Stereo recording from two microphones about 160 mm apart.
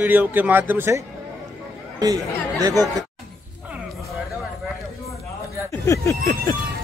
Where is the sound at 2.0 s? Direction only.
25° right (ahead or behind).